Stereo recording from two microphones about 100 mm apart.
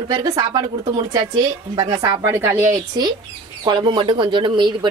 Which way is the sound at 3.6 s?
50° right (ahead or behind).